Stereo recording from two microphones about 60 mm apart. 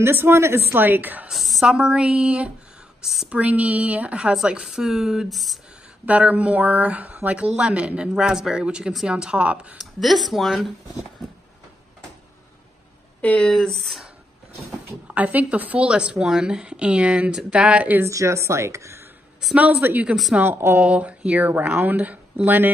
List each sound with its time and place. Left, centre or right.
0.0 s speech: right
0.7 s a woman's voice: right
1.3 s a woman's voice: centre
3.0 s speech: centre
3.3 s speech: right
4.6 s a woman's voice: centre
6.0 s a woman's voice: right
9.8 s speech: centre
13.4 s speech: centre
15.1 s a woman's voice: right
18.0 s speech: right
19.8 s a woman's voice: right
20.8 s speech: right